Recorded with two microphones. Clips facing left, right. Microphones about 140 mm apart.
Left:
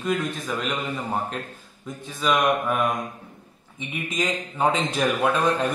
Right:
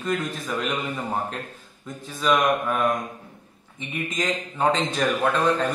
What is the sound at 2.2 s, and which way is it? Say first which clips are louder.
A man's voice: right 1 dB; centre (ahead or behind).